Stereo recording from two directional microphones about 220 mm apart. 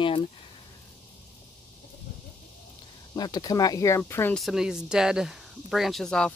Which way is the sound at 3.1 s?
15° left (ahead or behind).